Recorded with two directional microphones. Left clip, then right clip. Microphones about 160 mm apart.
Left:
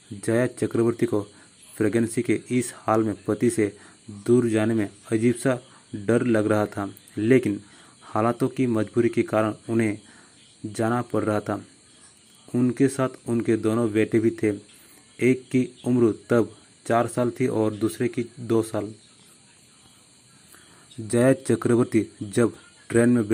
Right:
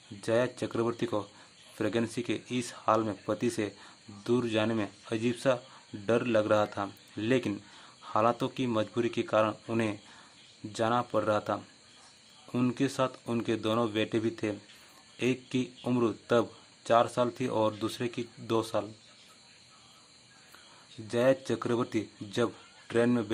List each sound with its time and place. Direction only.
0.2 s speech: 20° left (ahead or behind)
21.1 s speech: 30° left (ahead or behind)